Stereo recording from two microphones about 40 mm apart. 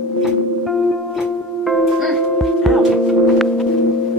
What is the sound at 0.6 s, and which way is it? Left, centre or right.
Music, centre.